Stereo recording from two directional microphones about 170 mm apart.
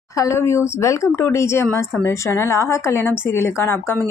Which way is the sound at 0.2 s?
15° left (ahead or behind).